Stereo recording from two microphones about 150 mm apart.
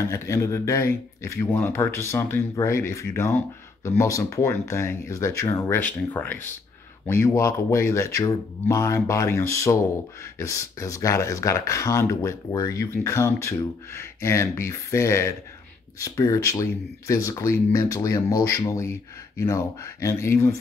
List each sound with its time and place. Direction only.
0.0 s speech: 20° left (ahead or behind)